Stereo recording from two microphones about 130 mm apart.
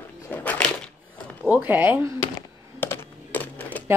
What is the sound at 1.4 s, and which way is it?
Speech, 10° right (ahead or behind).